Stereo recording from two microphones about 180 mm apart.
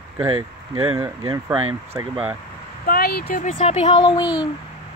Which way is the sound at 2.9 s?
60° left (ahead or behind).